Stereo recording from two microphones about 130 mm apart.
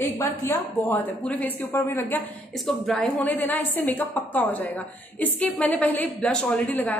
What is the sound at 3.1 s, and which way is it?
A woman's voice, 15° left (ahead or behind).